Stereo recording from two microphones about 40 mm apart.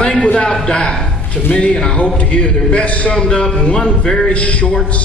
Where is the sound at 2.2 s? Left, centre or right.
Left.